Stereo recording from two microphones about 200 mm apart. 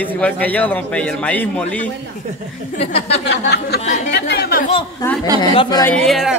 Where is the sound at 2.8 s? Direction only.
30° left (ahead or behind).